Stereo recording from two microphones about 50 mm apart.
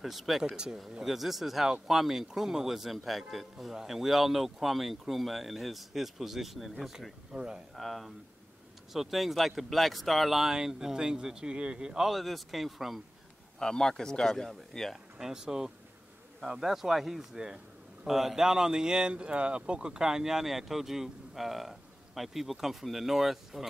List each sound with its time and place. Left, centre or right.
0.0 s speech: centre
0.4 s speech: centre
1.0 s speech: centre
7.3 s speech: centre
7.7 s speech: centre
12.1 s speech: centre
13.6 s a man's voice: centre
15.1 s speech: centre